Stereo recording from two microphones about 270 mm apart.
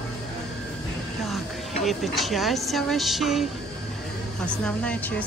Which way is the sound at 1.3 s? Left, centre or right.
Centre.